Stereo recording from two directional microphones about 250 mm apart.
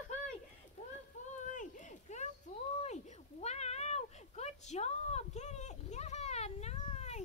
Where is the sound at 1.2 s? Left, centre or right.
Left.